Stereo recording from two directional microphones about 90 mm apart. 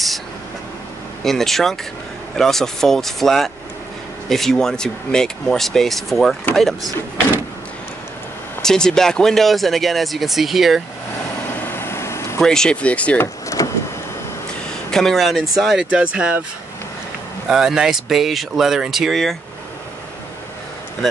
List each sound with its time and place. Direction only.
1.2 s speech: 5° left (ahead or behind)
8.6 s speech: 5° left (ahead or behind)
11.6 s vehicle: 25° left (ahead or behind)
12.4 s speech: 5° left (ahead or behind)
13.2 s power windows: 35° left (ahead or behind)
14.9 s speech: 5° left (ahead or behind); by 16.3 s 10° right (ahead or behind)
17.5 s speech: 5° right (ahead or behind)